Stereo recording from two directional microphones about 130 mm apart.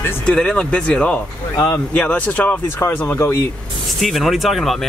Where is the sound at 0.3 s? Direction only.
5° left (ahead or behind).